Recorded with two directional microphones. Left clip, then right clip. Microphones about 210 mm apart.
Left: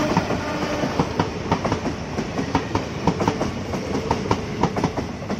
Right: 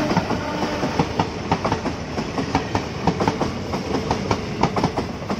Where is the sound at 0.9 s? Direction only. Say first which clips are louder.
Right 1 dB; 40° right (ahead or behind).